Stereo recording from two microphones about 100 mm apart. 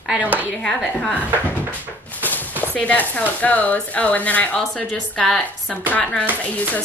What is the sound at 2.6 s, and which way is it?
Speech, 15° left (ahead or behind).